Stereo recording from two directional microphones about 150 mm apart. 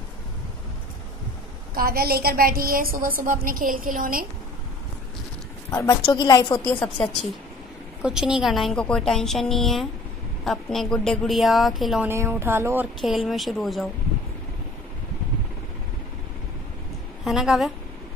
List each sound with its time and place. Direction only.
1.8 s a woman's voice: 90° right; by 4.3 s 70° right (ahead or behind)
5.7 s a woman's voice: 20° left (ahead or behind)
6.6 s a woman's voice: 10° left (ahead or behind)
8.0 s a woman's voice: 5° right (ahead or behind)
12.1 s speech: 15° right (ahead or behind)
13.0 s a woman's voice: centre (ahead or behind)
17.2 s a woman's voice: centre (ahead or behind)